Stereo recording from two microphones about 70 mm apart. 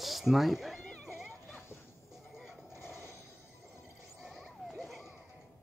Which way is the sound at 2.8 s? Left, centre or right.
Left.